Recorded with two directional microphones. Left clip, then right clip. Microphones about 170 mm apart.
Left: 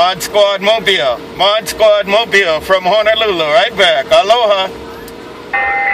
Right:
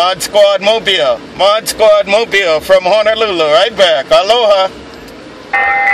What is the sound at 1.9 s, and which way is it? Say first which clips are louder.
Speech: right 1 dB; 40° right (ahead or behind).